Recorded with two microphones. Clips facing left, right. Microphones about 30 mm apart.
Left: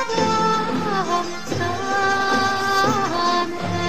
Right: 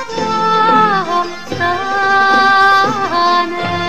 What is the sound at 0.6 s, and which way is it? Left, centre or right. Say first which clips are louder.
Music: right 13 dB; right.